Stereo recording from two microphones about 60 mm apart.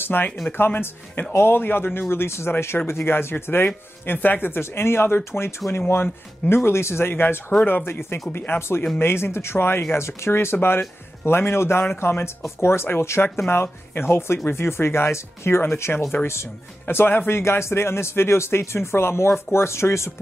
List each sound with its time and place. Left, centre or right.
0.0 s speech: left
17.4 s speech: left